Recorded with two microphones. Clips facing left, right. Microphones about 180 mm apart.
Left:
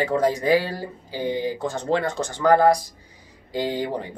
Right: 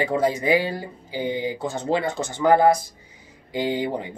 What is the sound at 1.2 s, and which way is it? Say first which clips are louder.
Speech: left 1 dB; 5° right (ahead or behind).